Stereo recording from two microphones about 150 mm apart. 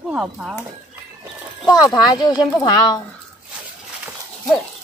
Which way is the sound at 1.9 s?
25° left (ahead or behind).